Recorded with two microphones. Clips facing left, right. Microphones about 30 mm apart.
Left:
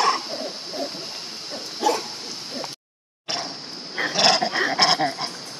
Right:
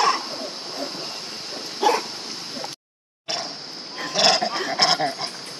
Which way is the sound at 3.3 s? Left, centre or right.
Centre.